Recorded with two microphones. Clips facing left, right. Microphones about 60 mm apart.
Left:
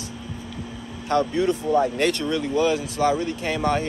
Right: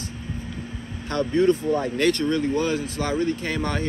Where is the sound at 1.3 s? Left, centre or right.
Right.